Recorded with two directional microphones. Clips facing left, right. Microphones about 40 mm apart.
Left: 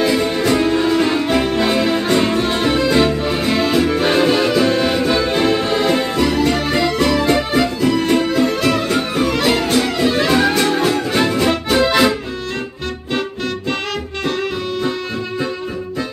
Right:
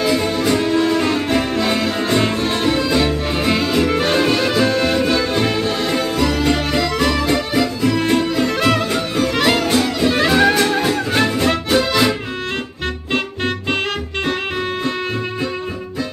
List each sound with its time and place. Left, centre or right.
0.0 s music: centre
3.3 s music: centre
4.1 s music: centre
6.2 s music: centre
7.2 s music: centre
8.5 s music: right
9.3 s music: centre
9.8 s music: centre
10.2 s music: centre
11.1 s music: centre
11.7 s accordion: centre